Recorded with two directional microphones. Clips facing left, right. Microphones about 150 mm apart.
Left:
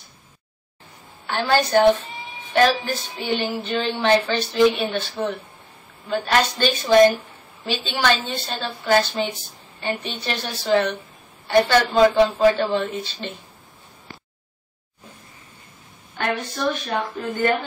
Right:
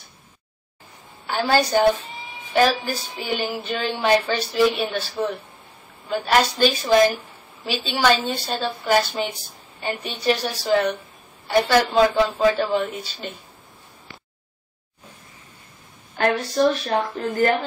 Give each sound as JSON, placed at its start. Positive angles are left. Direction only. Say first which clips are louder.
{"t": 1.3, "sound": "a woman's voice", "louder": "left 1 dB", "side_deg": -10}
{"t": 16.2, "sound": "speech", "louder": "right 6 dB", "side_deg": -35}